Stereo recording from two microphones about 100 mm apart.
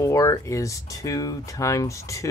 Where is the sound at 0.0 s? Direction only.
30° left (ahead or behind).